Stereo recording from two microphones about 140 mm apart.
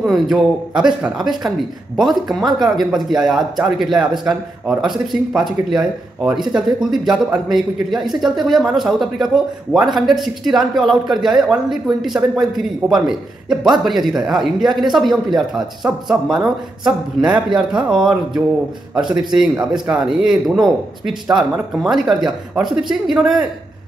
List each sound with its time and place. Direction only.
0.0 s a man's voice: 5° right (ahead or behind)